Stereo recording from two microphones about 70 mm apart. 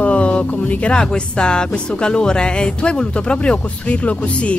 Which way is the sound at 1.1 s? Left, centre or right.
Centre.